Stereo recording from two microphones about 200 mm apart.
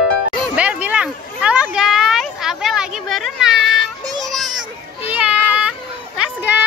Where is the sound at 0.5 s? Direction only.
5° right (ahead or behind).